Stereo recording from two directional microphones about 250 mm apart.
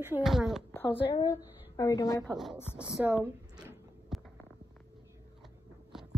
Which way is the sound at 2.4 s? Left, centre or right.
Centre.